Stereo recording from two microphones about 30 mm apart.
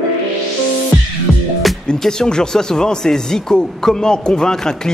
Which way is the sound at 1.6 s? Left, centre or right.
Centre.